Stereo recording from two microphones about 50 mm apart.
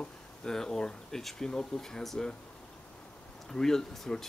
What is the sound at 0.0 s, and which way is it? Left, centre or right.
Speech, centre.